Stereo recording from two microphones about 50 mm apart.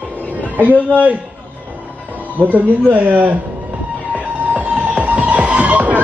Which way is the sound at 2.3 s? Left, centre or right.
Right.